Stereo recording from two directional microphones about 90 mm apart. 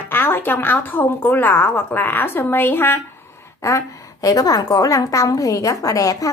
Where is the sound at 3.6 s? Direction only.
35° left (ahead or behind).